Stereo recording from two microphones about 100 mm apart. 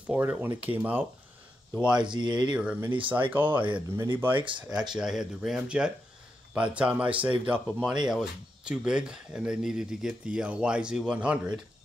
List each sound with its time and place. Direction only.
0.0 s speech: 15° right (ahead or behind)
2.0 s speech: 50° right (ahead or behind)
2.5 s speech: 10° right (ahead or behind)
4.6 s speech: 10° right (ahead or behind)